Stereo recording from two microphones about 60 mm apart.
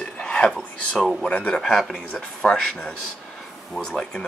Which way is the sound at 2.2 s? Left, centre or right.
Centre.